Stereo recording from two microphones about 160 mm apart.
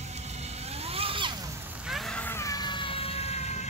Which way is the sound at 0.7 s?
40° right (ahead or behind).